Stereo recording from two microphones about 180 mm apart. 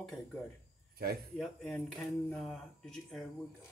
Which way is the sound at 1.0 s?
60° right (ahead or behind).